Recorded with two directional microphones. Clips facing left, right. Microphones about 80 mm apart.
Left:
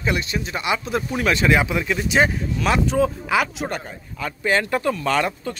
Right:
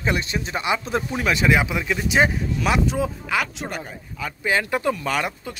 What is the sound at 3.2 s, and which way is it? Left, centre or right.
Speech, centre.